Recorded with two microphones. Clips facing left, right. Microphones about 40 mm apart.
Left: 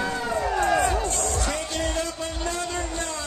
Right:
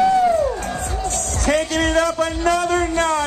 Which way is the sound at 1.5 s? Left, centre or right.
Right.